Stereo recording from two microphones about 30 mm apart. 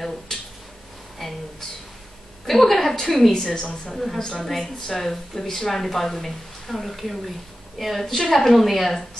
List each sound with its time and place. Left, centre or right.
1.2 s speech: centre
2.4 s a woman's voice: centre
3.3 s a woman's voice: left
3.9 s speech: centre
4.2 s a woman's voice: left
4.5 s speech: centre